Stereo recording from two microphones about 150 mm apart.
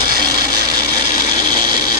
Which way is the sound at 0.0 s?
25° right (ahead or behind).